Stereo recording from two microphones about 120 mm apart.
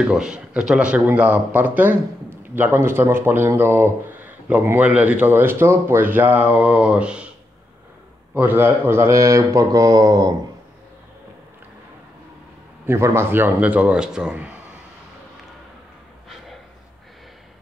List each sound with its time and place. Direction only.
0.1 s speech: 5° right (ahead or behind)
8.4 s speech: 15° right (ahead or behind)
12.8 s speech: 20° right (ahead or behind)